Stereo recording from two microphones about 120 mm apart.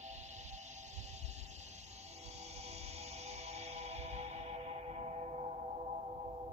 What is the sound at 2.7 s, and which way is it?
Music, 60° right (ahead or behind).